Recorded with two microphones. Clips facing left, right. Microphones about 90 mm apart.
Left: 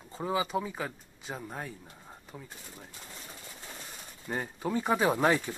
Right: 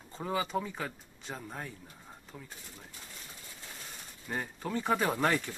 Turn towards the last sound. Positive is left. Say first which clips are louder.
# left 4 dB
turn(degrees=15)  # may be behind; listen again after turning